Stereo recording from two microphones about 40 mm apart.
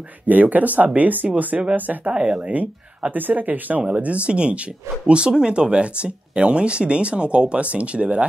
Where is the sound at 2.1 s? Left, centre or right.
Right.